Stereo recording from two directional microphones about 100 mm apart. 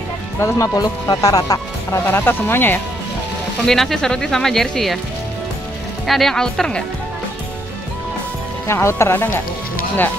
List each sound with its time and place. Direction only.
0.4 s speech: 35° left (ahead or behind)
2.0 s speech: 20° left (ahead or behind)
3.6 s speech: 5° left (ahead or behind)
6.0 s speech: centre (ahead or behind)
8.6 s speech: 25° left (ahead or behind)